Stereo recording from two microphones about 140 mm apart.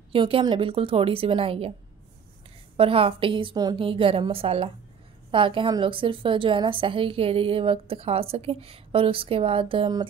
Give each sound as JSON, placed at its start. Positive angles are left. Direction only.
{"t": 0.1, "sound": "a woman's voice", "side_deg": -40}
{"t": 2.8, "sound": "a woman's voice", "side_deg": -40}